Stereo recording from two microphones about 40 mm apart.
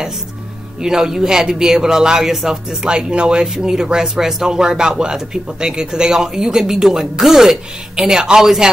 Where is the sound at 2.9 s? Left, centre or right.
Right; by 7.5 s centre.